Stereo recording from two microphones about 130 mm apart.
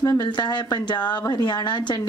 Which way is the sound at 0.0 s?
30° left (ahead or behind).